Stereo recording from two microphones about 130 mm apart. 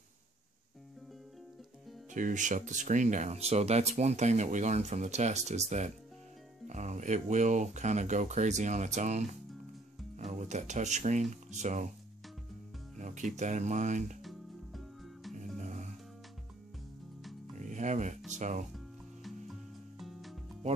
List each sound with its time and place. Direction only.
2.1 s speech: 80° right
13.0 s speech: 70° right (ahead or behind)
14.2 s music: centre (ahead or behind)
15.6 s music: 65° right (ahead or behind)
17.6 s music: 70° right (ahead or behind)
18.3 s speech: 70° right (ahead or behind)
20.0 s music: centre (ahead or behind)